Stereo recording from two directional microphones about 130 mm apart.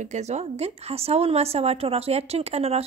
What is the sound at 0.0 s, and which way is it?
A woman's voice, 60° right (ahead or behind).